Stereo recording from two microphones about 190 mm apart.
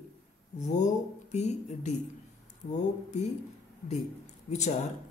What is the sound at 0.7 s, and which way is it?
Speech, 40° left (ahead or behind).